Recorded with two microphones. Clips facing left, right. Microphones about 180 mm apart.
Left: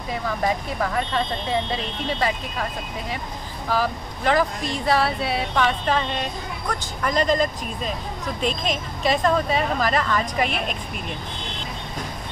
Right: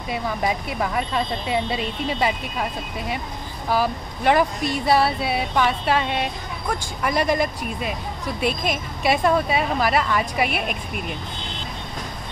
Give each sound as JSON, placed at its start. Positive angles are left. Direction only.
{"t": 0.9, "sound": "a woman's voice", "side_deg": -10}
{"t": 3.7, "sound": "a woman's voice", "side_deg": -15}